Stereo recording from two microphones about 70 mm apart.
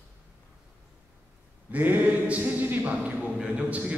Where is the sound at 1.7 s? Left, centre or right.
Right.